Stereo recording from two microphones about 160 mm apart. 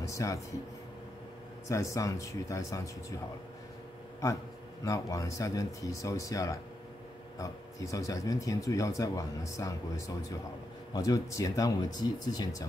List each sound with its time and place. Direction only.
0.0 s speech: 20° left (ahead or behind)
1.7 s speech: 20° left (ahead or behind)
4.8 s speech: 20° left (ahead or behind)